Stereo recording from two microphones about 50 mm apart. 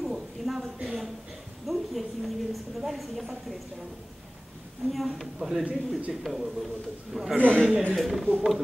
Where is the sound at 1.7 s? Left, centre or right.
Centre.